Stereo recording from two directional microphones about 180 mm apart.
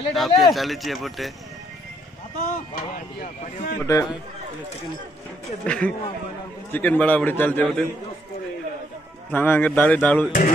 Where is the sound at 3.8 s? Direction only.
20° left (ahead or behind).